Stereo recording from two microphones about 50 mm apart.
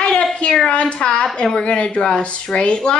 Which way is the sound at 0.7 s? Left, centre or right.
Left.